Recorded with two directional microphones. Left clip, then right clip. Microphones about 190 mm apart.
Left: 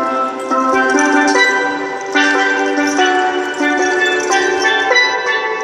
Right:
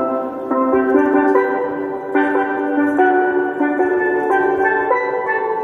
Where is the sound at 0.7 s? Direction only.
60° left (ahead or behind).